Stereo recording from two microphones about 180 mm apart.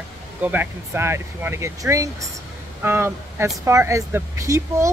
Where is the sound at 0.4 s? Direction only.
10° right (ahead or behind).